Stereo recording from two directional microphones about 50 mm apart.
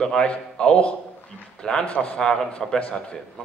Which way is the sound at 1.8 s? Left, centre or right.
Left.